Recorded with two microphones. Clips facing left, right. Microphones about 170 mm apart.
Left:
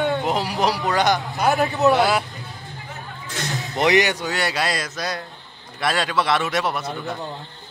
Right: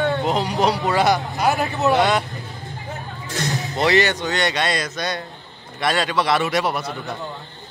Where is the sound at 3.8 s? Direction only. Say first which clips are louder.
Even; 15° left (ahead or behind).